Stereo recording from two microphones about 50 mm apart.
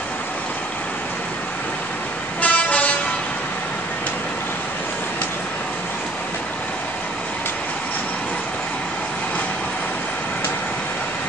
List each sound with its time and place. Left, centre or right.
2.4 s vehicle: left